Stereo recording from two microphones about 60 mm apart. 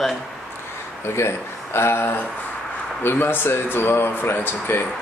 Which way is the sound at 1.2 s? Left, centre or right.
Left.